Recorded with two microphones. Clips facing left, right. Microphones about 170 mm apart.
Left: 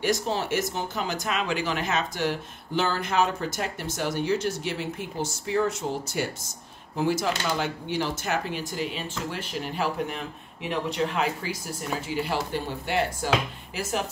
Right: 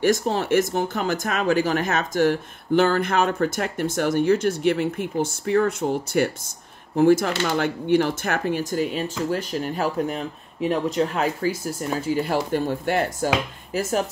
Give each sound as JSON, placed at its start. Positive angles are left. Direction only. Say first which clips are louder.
{"t": 0.0, "sound": "speech", "louder": "right 5 dB", "side_deg": -50}